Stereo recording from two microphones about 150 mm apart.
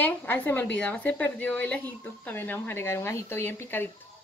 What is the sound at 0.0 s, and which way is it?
Speech, 10° left (ahead or behind).